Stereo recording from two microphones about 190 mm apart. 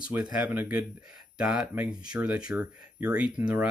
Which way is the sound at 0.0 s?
5° right (ahead or behind).